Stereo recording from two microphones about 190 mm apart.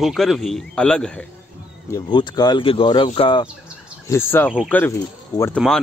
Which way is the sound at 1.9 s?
25° left (ahead or behind).